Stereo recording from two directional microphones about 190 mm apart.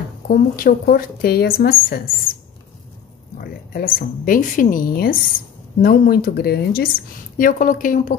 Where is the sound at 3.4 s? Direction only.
50° left (ahead or behind).